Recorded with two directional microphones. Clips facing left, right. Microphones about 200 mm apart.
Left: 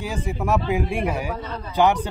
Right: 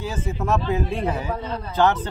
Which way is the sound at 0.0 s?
15° left (ahead or behind).